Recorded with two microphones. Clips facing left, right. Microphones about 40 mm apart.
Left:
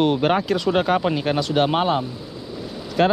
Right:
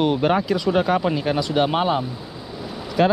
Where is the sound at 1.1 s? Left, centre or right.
Left.